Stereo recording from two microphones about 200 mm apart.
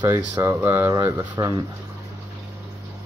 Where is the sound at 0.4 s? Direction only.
10° right (ahead or behind).